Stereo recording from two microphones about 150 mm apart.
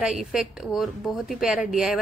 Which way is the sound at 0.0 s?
5° right (ahead or behind).